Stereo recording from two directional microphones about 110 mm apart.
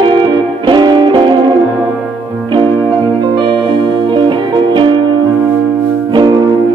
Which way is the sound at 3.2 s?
40° right (ahead or behind).